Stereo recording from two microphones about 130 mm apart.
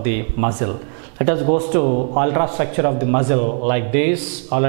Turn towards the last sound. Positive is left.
turn(degrees=-10)  # may be behind; listen again after turning